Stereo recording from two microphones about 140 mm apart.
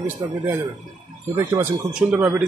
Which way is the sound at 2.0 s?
10° right (ahead or behind).